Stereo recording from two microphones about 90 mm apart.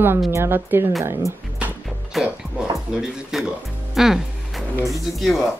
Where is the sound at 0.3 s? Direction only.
25° right (ahead or behind).